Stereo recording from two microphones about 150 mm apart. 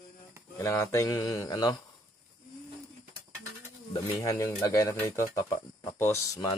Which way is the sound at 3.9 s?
25° left (ahead or behind).